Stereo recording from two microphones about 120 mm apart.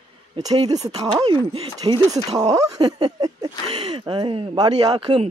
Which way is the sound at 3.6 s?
55° right (ahead or behind).